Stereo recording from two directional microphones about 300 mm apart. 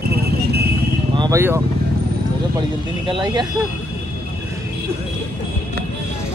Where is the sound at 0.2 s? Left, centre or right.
Right.